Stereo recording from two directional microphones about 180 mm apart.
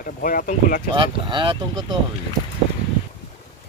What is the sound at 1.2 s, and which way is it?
Speech, 25° right (ahead or behind).